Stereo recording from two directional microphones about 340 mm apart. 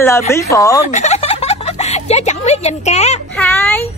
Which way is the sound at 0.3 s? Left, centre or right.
Centre.